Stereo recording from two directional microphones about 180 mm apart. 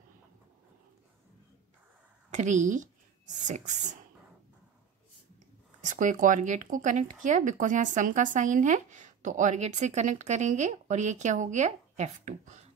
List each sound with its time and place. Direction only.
2.3 s speech: 40° right (ahead or behind)
5.9 s speech: 45° right (ahead or behind)